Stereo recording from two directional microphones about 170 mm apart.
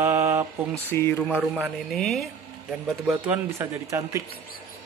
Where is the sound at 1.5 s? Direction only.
5° right (ahead or behind).